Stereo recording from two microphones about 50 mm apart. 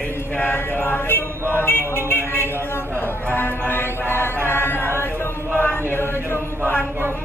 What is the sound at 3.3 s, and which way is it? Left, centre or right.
Music, left.